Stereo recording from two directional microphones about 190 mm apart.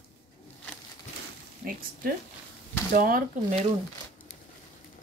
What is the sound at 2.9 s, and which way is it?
Speech, 50° right (ahead or behind).